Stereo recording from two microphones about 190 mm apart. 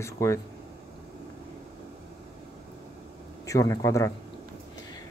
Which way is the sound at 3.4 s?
15° left (ahead or behind).